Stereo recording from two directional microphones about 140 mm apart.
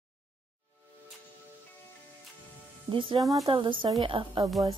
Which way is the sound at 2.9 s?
40° right (ahead or behind).